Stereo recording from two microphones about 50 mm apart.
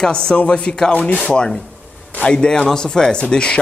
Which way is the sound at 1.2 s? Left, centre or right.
Centre.